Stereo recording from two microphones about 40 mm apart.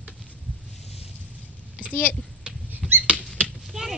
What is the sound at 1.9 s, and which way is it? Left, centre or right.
Speech, left.